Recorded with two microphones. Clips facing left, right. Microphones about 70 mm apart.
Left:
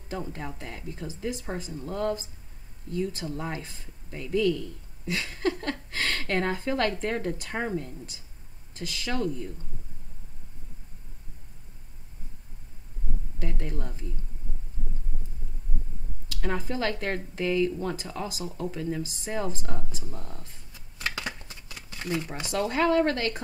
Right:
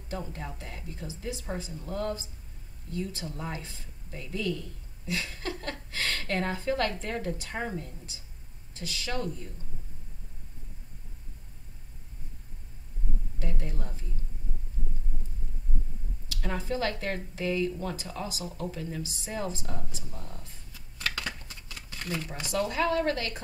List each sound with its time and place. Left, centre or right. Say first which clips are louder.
0.1 s a woman's voice: left 3 dB; left
13.4 s a sound: left 3 dB; left
16.3 s a woman's voice: left 2 dB; left
20.7 s shuffling cards: left 1 dB; centre
22.6 s a woman's voice: left 4 dB; left